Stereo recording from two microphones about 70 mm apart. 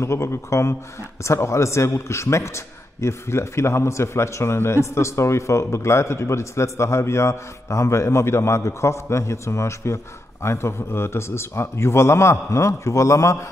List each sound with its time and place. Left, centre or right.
0.0 s a man's voice: left